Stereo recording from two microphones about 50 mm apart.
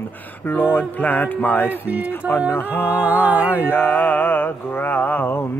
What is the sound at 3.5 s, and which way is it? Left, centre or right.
Mantra, left.